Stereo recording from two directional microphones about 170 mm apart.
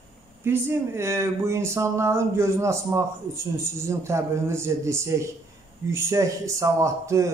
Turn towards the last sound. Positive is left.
turn(degrees=-20)  # may be behind; listen again after turning